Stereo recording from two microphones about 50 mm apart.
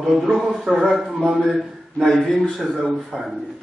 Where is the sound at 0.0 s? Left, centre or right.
Centre.